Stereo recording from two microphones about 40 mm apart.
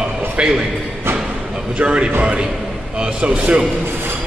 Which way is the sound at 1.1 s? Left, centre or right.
Right.